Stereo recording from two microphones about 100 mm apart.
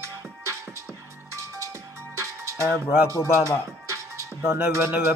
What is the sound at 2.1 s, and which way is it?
Music, 30° right (ahead or behind).